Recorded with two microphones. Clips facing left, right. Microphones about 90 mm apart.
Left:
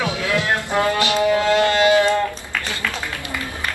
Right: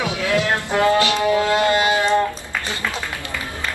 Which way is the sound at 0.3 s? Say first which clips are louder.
Right 2 dB; 20° right (ahead or behind).